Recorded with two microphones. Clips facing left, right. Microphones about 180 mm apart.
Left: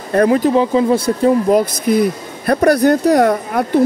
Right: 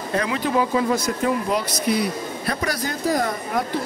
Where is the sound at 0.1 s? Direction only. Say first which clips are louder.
Left 11 dB; 50° left (ahead or behind).